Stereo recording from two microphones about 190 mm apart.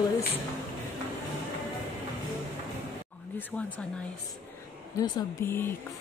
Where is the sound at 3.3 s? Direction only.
10° left (ahead or behind).